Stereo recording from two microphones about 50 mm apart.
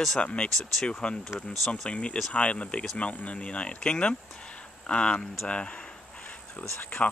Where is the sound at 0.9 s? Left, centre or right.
Left.